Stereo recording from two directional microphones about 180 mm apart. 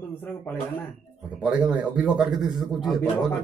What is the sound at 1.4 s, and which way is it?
A man's voice, 5° right (ahead or behind).